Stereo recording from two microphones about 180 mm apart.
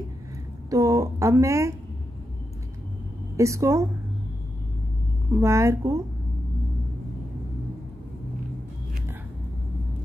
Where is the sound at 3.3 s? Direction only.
15° right (ahead or behind).